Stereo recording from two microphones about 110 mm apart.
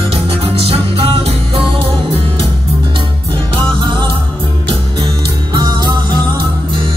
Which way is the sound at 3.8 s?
45° right (ahead or behind).